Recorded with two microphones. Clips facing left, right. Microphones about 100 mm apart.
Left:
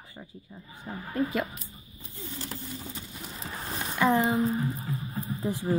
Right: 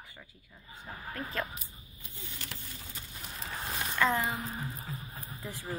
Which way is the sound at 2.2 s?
35° left (ahead or behind).